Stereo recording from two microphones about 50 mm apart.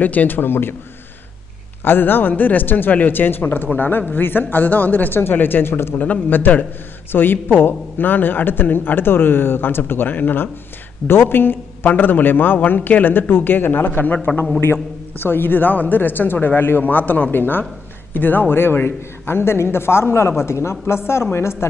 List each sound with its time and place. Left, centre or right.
0.0 s speech: left
1.9 s speech: left
5.9 s speech: left
14.1 s speech: left
14.6 s a man's voice: left